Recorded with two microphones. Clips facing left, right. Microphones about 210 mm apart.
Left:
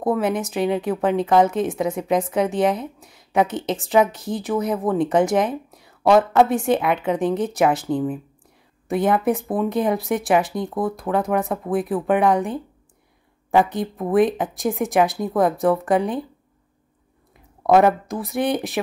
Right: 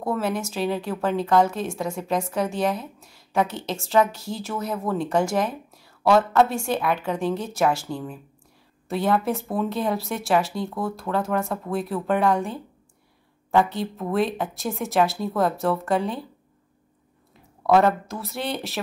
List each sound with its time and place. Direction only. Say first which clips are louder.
0.0 s a woman's voice: left 5 dB; 20° left (ahead or behind)
17.6 s speech: left 3 dB; 15° left (ahead or behind)